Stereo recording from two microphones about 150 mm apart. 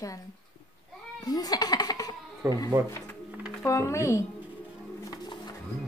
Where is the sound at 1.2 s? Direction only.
25° left (ahead or behind).